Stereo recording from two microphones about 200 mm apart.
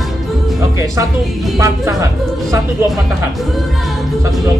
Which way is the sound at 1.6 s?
15° right (ahead or behind).